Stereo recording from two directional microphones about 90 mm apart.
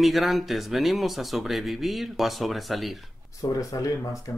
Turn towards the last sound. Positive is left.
turn(degrees=35)  # may be behind; listen again after turning